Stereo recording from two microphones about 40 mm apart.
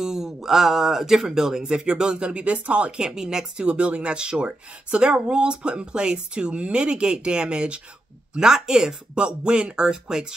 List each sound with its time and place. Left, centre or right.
0.0 s speech: centre; by 2.9 s right
3.0 s speech: centre
3.6 s speech: right
8.4 s speech: centre